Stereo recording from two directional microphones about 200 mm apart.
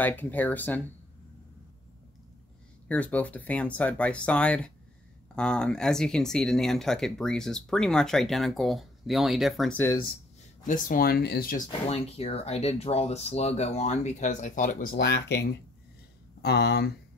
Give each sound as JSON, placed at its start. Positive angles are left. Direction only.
{"t": 0.0, "sound": "speech", "side_deg": 10}
{"t": 2.9, "sound": "speech", "side_deg": 5}
{"t": 10.7, "sound": "speech", "side_deg": 45}
{"t": 11.9, "sound": "speech", "side_deg": 30}
{"t": 16.4, "sound": "speech", "side_deg": 55}